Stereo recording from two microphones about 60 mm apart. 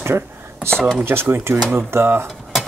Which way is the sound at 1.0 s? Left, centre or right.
Right.